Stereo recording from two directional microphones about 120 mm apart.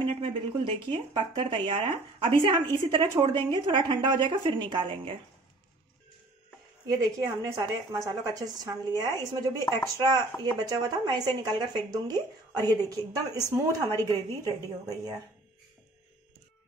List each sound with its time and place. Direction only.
0.0 s speech: 45° right (ahead or behind)
6.9 s a woman's voice: 30° right (ahead or behind)
14.9 s speech: 30° right (ahead or behind)